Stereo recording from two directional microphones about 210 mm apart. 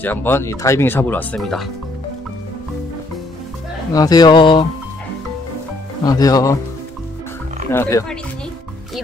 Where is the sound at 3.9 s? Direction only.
20° left (ahead or behind).